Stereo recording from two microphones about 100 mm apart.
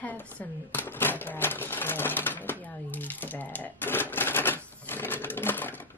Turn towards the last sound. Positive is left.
turn(degrees=20)  # may be behind; listen again after turning